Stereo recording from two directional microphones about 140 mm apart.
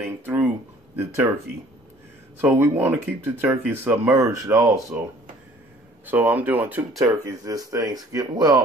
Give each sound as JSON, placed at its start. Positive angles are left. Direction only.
{"t": 0.0, "sound": "a sound", "side_deg": -15}
{"t": 2.3, "sound": "speech", "side_deg": -15}
{"t": 6.0, "sound": "speech", "side_deg": -15}
{"t": 7.1, "sound": "speech", "side_deg": -25}